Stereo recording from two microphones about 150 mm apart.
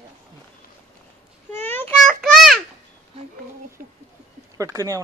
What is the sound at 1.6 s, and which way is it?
Child singing, 15° left (ahead or behind).